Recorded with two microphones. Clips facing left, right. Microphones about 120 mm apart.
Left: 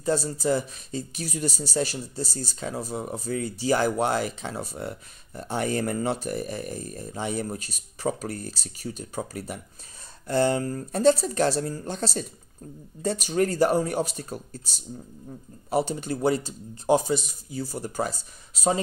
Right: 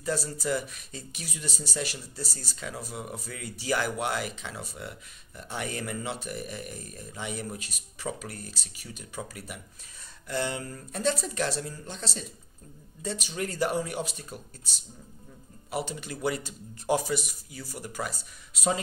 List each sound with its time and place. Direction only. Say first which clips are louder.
0.0 s speech: left 6 dB; 25° left (ahead or behind)